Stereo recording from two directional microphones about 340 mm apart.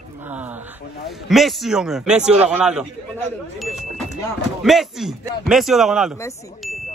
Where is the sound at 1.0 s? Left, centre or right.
Centre.